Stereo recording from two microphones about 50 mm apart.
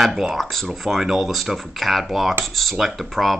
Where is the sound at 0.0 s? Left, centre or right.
Centre.